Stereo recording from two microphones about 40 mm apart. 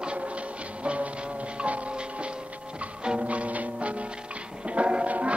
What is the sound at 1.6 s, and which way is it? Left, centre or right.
Music, right.